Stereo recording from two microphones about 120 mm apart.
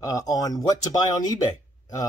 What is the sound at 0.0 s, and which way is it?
Speech, 30° left (ahead or behind).